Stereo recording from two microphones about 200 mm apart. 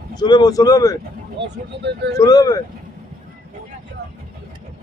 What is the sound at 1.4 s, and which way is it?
Speech, 60° right (ahead or behind).